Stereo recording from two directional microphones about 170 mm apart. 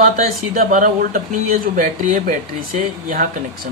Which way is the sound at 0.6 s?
50° right (ahead or behind).